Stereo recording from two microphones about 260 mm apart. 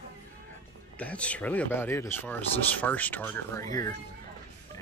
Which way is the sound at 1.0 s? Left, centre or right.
Centre.